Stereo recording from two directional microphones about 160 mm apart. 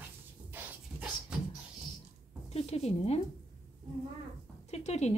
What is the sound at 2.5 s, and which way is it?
Music, 40° left (ahead or behind).